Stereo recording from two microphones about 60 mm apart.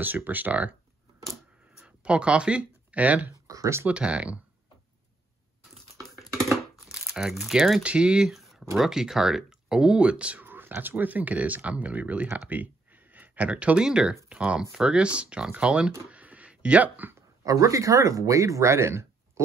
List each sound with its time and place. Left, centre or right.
0.0 s speech: right
2.0 s speech: centre
3.4 s a sound: right
3.8 s speech: centre
6.5 s crumpling: centre
7.8 s speech: centre
8.3 s a sound: centre
8.7 s speech: centre
10.4 s a sound: right
10.8 s speech: right; by 15.9 s centre
16.1 s a sound: right
17.5 s speech: right